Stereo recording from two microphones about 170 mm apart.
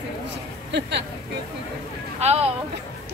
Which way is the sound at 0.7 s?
90° right.